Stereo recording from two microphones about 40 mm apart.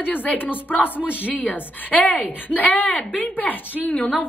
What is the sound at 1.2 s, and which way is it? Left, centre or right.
A woman's voice, left.